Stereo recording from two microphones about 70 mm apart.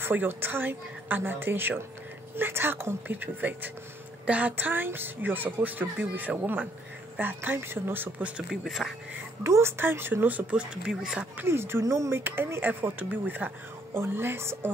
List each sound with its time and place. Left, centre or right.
0.0 s speech: right
8.6 s speech: centre
9.4 s speech: right
10.5 s speech: centre
11.3 s speech: right
12.2 s speech: right